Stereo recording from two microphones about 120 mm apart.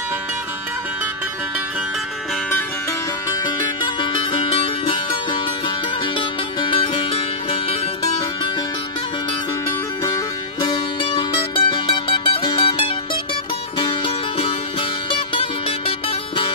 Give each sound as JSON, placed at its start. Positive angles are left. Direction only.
{"t": 3.4, "sound": "music", "side_deg": 40}
{"t": 10.0, "sound": "music", "side_deg": 30}
{"t": 11.1, "sound": "music", "side_deg": 45}